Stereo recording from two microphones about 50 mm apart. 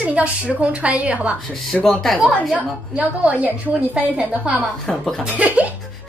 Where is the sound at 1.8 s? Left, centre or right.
Centre.